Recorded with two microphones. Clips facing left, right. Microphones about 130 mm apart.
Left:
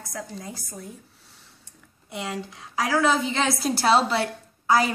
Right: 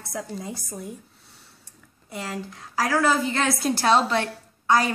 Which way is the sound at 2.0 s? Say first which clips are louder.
Left 1 dB; centre (ahead or behind).